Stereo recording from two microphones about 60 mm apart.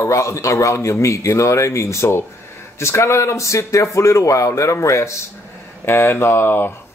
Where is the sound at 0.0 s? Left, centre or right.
Left.